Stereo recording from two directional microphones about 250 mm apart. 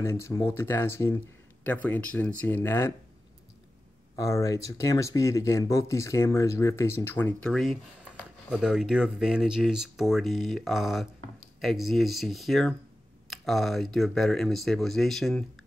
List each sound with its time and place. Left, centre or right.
0.0 s speech: centre
4.2 s speech: centre